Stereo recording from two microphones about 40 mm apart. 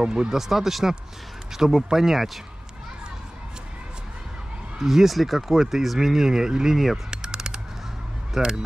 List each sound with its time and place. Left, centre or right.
0.0 s speech: centre
4.7 s speech: centre
7.1 s a sound: centre
8.3 s speech: centre